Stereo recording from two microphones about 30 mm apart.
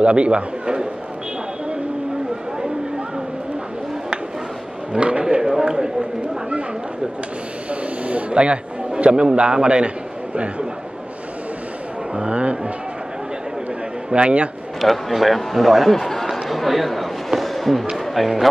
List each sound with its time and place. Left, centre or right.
0.0 s speech: right
4.9 s speech: right
5.3 s a sound: centre
5.7 s speech: right
8.3 s a man's voice: right
12.2 s speech: right
14.1 s speech: right
14.8 s a man's voice: centre
15.9 s a man's voice: centre
16.3 s a sound: centre
17.4 s fireworks: centre
17.9 s speech: centre